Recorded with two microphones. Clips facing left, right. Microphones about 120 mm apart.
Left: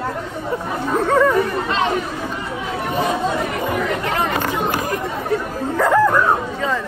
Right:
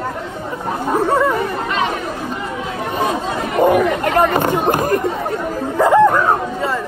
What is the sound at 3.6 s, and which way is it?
Chatter, 50° right (ahead or behind).